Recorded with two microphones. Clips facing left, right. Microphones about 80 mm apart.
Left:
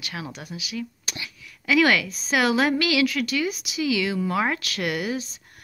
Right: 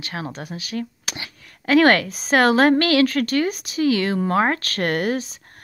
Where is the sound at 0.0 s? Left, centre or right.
Right.